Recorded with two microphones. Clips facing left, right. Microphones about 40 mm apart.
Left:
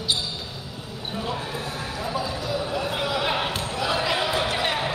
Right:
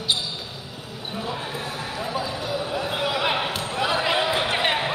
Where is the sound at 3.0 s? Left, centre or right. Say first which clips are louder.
Right 3 dB; right.